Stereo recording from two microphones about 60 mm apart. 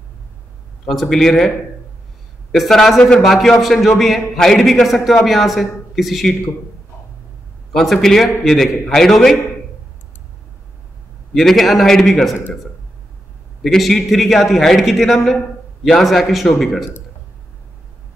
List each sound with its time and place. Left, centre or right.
0.8 s a man's voice: centre
2.5 s a man's voice: centre
7.7 s a man's voice: centre
11.3 s a man's voice: centre
13.6 s a man's voice: centre